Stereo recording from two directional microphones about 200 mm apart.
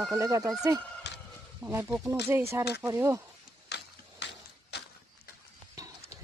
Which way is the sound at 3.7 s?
55° left (ahead or behind).